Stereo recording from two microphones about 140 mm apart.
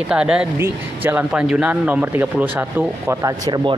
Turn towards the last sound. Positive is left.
turn(degrees=-30)  # may be behind; listen again after turning